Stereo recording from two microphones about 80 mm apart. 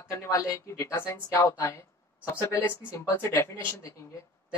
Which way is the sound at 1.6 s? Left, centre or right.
Left.